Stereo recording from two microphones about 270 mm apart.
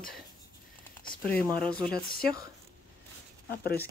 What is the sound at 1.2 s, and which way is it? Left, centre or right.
Speech, centre.